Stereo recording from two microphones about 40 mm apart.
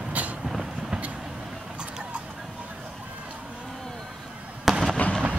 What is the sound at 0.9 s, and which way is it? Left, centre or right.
Vehicle, right.